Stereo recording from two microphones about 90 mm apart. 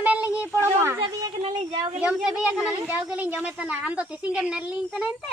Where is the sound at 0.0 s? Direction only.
15° right (ahead or behind).